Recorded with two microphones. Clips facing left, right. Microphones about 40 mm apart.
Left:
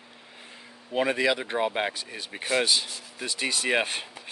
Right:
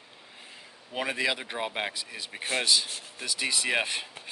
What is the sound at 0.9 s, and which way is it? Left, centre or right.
Speech, centre.